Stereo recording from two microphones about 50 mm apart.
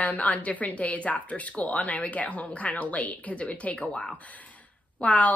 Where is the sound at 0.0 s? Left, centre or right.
Left.